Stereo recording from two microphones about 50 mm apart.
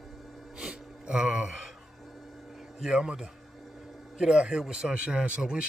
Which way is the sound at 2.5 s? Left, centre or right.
Centre.